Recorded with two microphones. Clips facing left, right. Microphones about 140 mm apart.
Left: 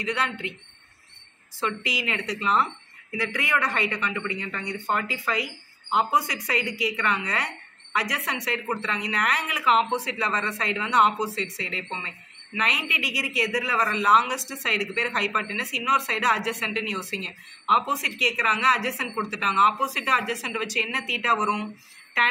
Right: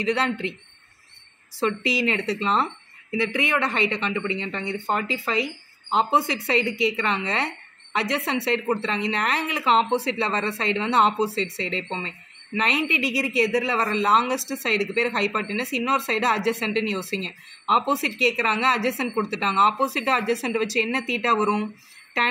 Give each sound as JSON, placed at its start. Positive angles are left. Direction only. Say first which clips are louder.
{"t": 0.0, "sound": "speech", "louder": "right 5 dB", "side_deg": -30}
{"t": 1.6, "sound": "a woman's voice", "louder": "right 6 dB", "side_deg": -35}